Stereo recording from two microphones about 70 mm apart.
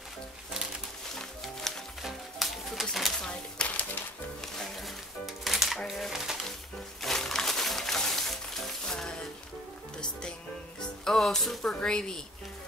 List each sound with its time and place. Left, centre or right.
1.4 s music: centre
3.3 s a sound: centre
4.6 s music: centre
5.9 s a sound: centre
7.0 s music: centre
11.1 s speech: centre